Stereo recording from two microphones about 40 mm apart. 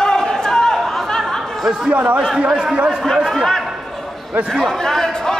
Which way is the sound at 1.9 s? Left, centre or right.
Right.